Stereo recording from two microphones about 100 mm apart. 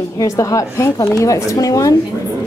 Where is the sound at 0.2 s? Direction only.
35° left (ahead or behind).